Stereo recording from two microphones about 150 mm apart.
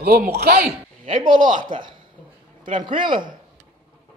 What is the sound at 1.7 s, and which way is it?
Speech, 30° right (ahead or behind).